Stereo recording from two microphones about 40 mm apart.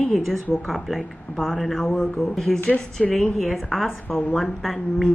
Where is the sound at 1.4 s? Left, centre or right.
Centre.